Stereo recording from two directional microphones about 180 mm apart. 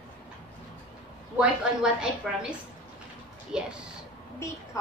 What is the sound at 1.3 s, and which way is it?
Speech, 5° right (ahead or behind).